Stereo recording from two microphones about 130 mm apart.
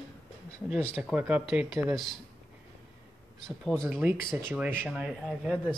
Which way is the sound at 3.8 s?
15° right (ahead or behind).